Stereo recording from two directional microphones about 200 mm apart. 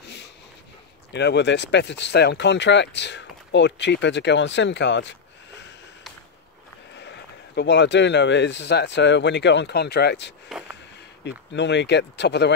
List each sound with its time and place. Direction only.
0.0 s a sound: 55° left (ahead or behind)
1.1 s speech: 60° left (ahead or behind)
7.0 s speech: 60° left (ahead or behind)